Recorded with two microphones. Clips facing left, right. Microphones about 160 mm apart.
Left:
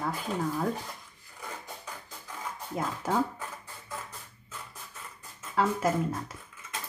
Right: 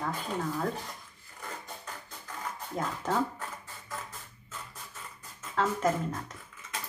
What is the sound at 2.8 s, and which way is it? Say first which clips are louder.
Speech: left 1 dB; 5° left (ahead or behind).